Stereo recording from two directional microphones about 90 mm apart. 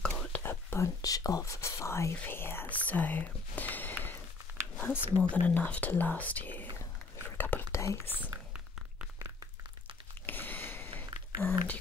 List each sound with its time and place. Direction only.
0.0 s whispering: 10° left (ahead or behind)
0.4 s speech: 25° left (ahead or behind)
7.3 s whispering: 20° left (ahead or behind)
7.7 s speech: 35° left (ahead or behind)
8.2 s a sound: 15° right (ahead or behind)
10.2 s a sound: 20° left (ahead or behind)
11.4 s speech: 5° left (ahead or behind)